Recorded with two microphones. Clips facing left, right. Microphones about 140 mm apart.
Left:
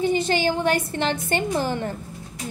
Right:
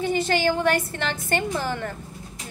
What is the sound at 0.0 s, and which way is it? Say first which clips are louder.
A woman's voice: left 1 dB; 20° left (ahead or behind).